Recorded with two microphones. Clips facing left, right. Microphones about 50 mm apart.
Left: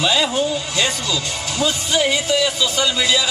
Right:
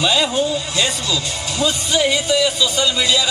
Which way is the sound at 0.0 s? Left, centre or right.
Centre.